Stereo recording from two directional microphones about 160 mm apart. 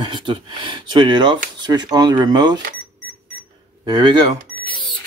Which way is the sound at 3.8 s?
30° right (ahead or behind).